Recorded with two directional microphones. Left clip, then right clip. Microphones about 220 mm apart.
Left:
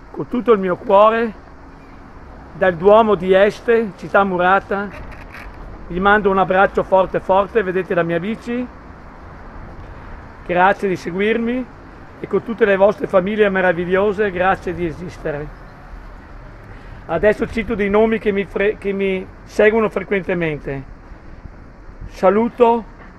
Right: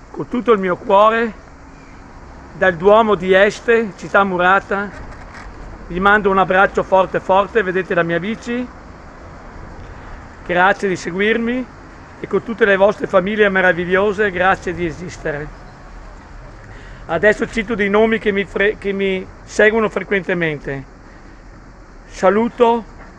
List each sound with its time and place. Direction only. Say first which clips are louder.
0.2 s speech: even; 5° left (ahead or behind)
2.6 s speech: even; 5° left (ahead or behind)
5.9 s speech: right 1 dB; 5° left (ahead or behind)
10.4 s speech: even; 5° left (ahead or behind)
17.1 s speech: right 1 dB; 5° left (ahead or behind)
22.1 s speech: even; 5° left (ahead or behind)